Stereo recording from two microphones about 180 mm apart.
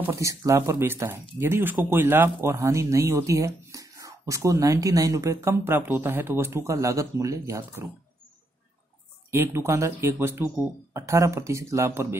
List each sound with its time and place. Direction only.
0.0 s speech: 15° right (ahead or behind)
9.3 s speech: 15° right (ahead or behind)